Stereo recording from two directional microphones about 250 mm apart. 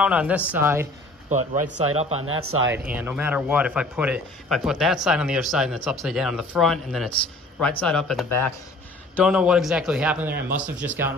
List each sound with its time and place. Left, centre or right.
0.0 s a man's voice: centre
1.6 s a man's voice: right
2.0 s speech: right
2.2 s speech: right
2.9 s a man's voice: centre
9.1 s a man's voice: centre